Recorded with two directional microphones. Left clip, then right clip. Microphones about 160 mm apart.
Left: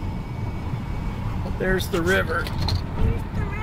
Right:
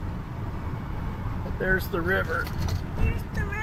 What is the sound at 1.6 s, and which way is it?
Speech, 15° left (ahead or behind).